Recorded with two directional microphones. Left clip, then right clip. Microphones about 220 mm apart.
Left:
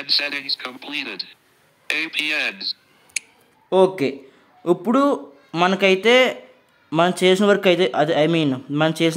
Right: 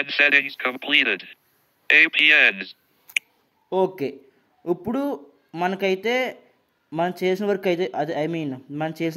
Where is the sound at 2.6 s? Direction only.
45° left (ahead or behind).